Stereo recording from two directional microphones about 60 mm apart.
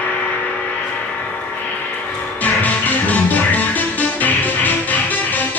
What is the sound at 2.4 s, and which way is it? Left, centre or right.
Music, left.